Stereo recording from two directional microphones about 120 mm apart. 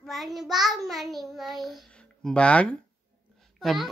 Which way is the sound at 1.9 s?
10° left (ahead or behind).